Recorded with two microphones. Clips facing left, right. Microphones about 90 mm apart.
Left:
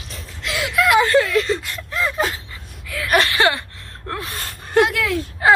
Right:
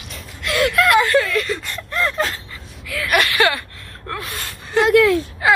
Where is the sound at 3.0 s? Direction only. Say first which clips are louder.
Even; 30° left (ahead or behind).